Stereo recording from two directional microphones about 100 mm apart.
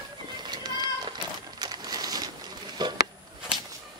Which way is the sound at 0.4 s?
45° right (ahead or behind).